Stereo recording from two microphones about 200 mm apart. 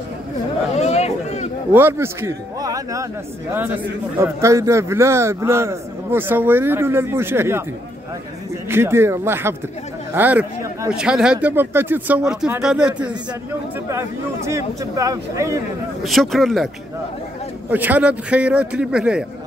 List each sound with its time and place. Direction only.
0.7 s a sound: 35° left (ahead or behind)
1.7 s a man's voice: 10° right (ahead or behind)
8.6 s a man's voice: 10° right (ahead or behind)
16.0 s a man's voice: centre (ahead or behind)
17.6 s a man's voice: 10° right (ahead or behind)